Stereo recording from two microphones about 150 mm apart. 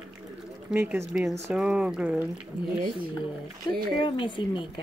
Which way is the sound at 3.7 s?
90° right.